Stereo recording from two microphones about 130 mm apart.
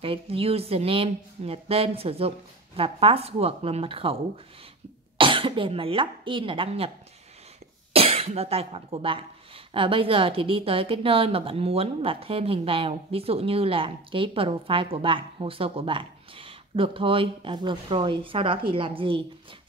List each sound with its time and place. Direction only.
0.0 s a woman's voice: 45° right (ahead or behind)
7.9 s a woman's voice: 50° right (ahead or behind)